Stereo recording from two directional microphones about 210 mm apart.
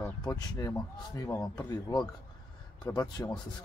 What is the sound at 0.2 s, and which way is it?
Speech, 15° left (ahead or behind).